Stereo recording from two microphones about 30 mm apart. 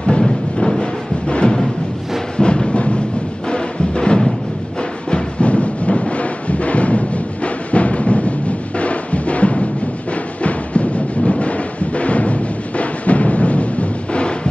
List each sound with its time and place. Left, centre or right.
0.2 s music: left
5.1 s music: left